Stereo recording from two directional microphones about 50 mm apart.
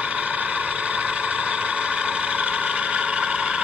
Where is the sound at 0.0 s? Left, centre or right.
Right.